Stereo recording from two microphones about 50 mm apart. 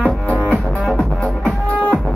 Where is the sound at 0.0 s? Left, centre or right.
Left.